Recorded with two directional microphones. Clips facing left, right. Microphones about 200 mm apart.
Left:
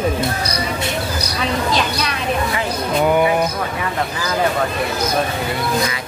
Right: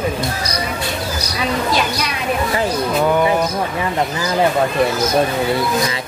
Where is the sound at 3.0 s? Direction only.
10° left (ahead or behind).